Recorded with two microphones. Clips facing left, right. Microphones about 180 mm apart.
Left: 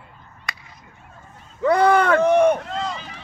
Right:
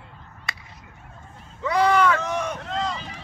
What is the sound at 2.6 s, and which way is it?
Run, 5° left (ahead or behind).